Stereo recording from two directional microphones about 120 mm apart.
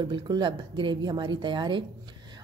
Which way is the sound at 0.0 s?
40° right (ahead or behind).